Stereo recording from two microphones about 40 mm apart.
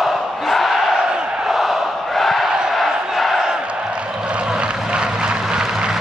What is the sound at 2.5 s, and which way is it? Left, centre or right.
Crowd, centre.